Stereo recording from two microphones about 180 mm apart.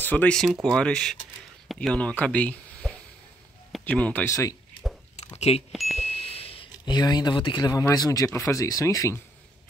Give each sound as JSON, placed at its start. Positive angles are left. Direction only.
{"t": 0.0, "sound": "speech", "side_deg": 10}
{"t": 5.7, "sound": "speech", "side_deg": 0}
{"t": 5.9, "sound": "speech", "side_deg": 35}